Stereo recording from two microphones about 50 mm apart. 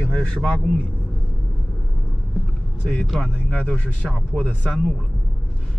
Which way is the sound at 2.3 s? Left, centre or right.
Centre.